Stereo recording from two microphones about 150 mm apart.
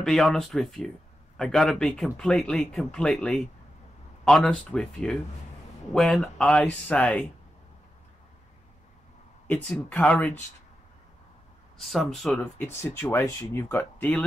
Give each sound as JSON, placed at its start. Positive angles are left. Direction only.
{"t": 0.0, "sound": "speech", "side_deg": 0}
{"t": 9.5, "sound": "speech", "side_deg": 10}
{"t": 11.8, "sound": "speech", "side_deg": 0}